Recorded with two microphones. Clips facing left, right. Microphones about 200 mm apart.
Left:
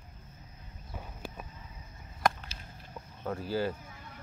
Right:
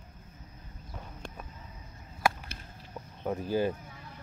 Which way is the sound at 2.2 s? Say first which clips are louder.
Even; 5° right (ahead or behind).